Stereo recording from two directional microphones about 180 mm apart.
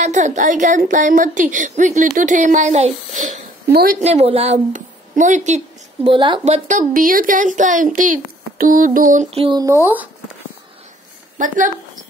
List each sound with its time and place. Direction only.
0.0 s a woman's voice: 40° right (ahead or behind)
6.0 s a woman's voice: 25° right (ahead or behind); by 9.3 s 50° right (ahead or behind)
9.3 s speech: 30° right (ahead or behind)
11.3 s a woman's voice: 45° right (ahead or behind)